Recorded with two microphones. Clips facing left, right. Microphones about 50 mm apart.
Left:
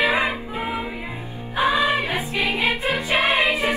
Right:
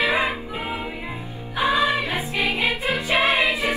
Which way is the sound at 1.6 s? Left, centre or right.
Left.